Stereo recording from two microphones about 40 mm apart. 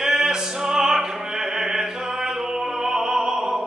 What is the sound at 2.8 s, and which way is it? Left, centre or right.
Opera, centre.